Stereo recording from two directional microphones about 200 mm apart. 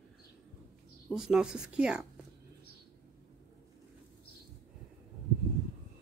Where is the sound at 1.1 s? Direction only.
Centre (ahead or behind).